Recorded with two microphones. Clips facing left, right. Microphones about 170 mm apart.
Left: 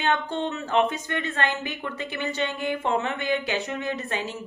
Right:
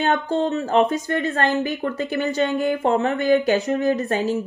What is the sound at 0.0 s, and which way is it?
Speech, 40° right (ahead or behind).